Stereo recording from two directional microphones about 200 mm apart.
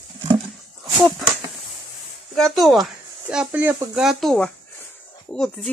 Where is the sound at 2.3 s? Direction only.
Centre (ahead or behind).